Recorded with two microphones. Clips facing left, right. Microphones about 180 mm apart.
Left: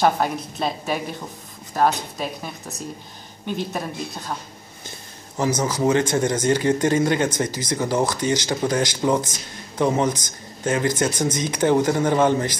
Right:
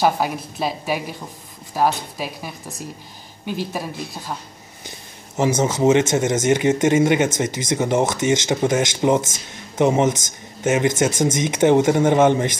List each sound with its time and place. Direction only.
0.0 s a woman's voice: 5° right (ahead or behind)
5.4 s speech: 25° right (ahead or behind)